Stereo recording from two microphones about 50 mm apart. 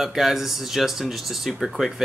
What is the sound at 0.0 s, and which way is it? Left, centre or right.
Speech, centre.